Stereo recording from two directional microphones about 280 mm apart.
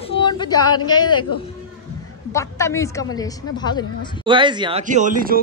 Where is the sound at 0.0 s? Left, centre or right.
Centre.